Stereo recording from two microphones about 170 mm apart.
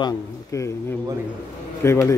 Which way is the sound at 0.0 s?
20° left (ahead or behind).